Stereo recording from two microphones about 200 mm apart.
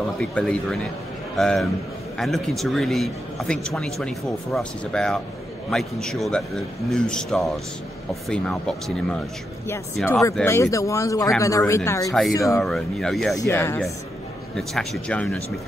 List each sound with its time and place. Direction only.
0.2 s a man's voice: 5° left (ahead or behind)
10.4 s speech: 15° left (ahead or behind)
12.1 s speech: centre (ahead or behind)
12.4 s speech: 15° left (ahead or behind)
12.6 s speech: centre (ahead or behind)
13.4 s speech: 15° left (ahead or behind)
14.5 s speech: centre (ahead or behind)